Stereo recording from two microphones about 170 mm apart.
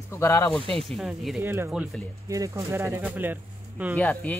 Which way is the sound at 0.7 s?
Centre (ahead or behind).